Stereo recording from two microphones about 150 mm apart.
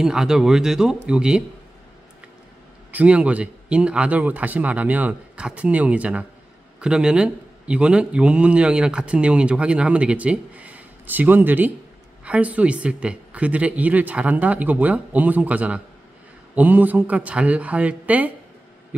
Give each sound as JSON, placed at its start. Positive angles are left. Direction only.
{"t": 0.0, "sound": "speech", "side_deg": -5}
{"t": 2.9, "sound": "a man's voice", "side_deg": -10}